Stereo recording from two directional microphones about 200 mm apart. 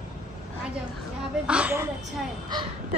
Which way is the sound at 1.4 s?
5° right (ahead or behind).